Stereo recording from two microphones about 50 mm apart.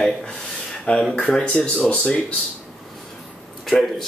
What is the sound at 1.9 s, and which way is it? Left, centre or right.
Speech, left.